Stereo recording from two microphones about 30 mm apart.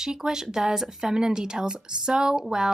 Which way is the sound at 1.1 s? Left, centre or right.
Right.